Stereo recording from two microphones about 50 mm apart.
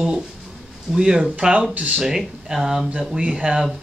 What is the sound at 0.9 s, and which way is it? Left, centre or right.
Speech, centre.